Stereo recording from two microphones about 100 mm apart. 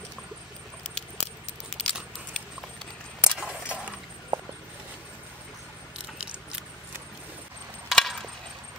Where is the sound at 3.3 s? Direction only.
5° right (ahead or behind).